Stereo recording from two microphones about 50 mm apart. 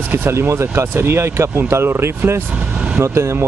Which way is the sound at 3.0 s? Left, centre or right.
Right.